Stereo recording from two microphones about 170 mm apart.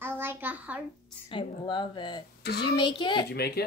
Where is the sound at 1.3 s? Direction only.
30° left (ahead or behind).